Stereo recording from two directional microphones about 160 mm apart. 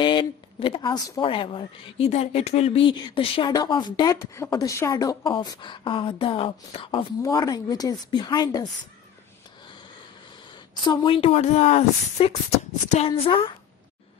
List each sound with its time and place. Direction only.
0.0 s speech: 30° left (ahead or behind)
7.2 s speech: 20° left (ahead or behind)
10.9 s a woman's voice: 30° left (ahead or behind)